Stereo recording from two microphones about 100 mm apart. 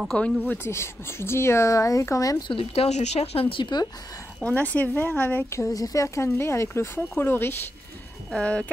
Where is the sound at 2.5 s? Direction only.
70° left (ahead or behind); by 4.3 s 35° left (ahead or behind).